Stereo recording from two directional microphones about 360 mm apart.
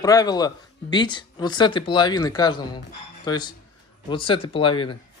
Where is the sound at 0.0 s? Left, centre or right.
Centre.